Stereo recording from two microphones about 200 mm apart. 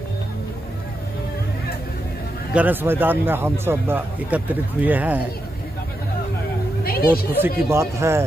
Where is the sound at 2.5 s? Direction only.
10° right (ahead or behind).